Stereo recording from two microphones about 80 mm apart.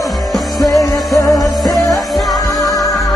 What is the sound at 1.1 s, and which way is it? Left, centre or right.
Music, left.